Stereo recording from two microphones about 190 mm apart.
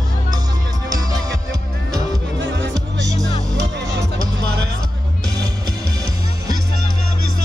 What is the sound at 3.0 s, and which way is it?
Music, 20° right (ahead or behind).